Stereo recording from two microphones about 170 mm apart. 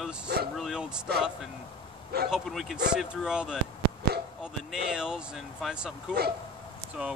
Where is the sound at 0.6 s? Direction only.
5° right (ahead or behind).